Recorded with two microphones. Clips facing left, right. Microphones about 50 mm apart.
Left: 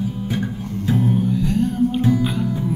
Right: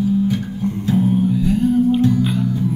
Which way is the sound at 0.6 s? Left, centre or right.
Right.